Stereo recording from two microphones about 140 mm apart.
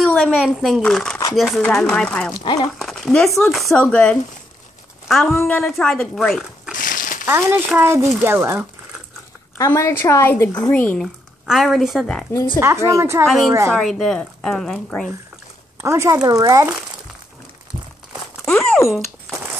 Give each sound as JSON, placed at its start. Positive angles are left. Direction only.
{"t": 0.1, "sound": "speech", "side_deg": 0}
{"t": 2.4, "sound": "speech", "side_deg": 30}
{"t": 2.8, "sound": "speech", "side_deg": 5}
{"t": 6.7, "sound": "crumpling", "side_deg": 75}
{"t": 7.2, "sound": "speech", "side_deg": -15}
{"t": 9.6, "sound": "speech", "side_deg": 20}
{"t": 11.4, "sound": "speech", "side_deg": 0}
{"t": 12.5, "sound": "a woman's voice", "side_deg": -20}
{"t": 13.7, "sound": "speech", "side_deg": 5}
{"t": 15.8, "sound": "a woman's voice", "side_deg": -20}
{"t": 18.4, "sound": "a sound", "side_deg": 5}